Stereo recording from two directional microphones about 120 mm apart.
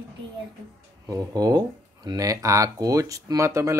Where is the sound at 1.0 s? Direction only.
30° right (ahead or behind).